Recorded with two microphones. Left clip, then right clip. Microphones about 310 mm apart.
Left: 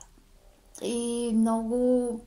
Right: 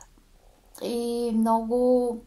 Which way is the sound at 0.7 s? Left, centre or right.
Right.